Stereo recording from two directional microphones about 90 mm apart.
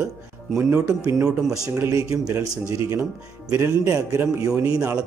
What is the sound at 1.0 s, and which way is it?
Speech, 35° right (ahead or behind).